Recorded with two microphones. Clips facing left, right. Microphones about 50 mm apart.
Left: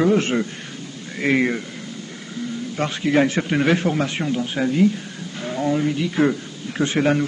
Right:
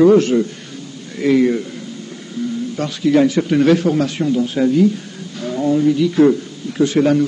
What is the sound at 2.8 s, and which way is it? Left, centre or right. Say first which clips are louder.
A man's voice: right 4 dB; left.